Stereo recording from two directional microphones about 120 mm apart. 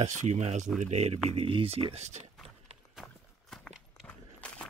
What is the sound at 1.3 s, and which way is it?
Speech, 50° right (ahead or behind).